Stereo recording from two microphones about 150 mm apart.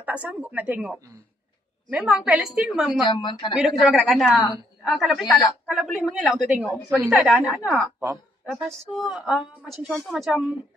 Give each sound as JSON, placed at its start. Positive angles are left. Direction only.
{"t": 0.0, "sound": "a woman's voice", "side_deg": -10}
{"t": 3.1, "sound": "a woman's voice", "side_deg": 30}
{"t": 3.5, "sound": "a woman's voice", "side_deg": 0}